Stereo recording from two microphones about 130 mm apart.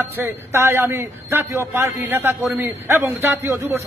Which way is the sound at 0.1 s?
20° right (ahead or behind).